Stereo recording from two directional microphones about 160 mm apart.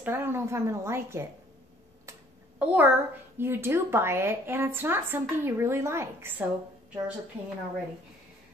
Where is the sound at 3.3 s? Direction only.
15° right (ahead or behind).